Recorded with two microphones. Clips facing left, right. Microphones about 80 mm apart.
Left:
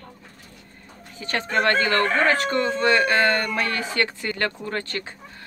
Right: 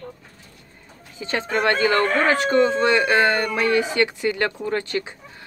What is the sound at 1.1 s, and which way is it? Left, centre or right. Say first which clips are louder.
Speech: even; centre.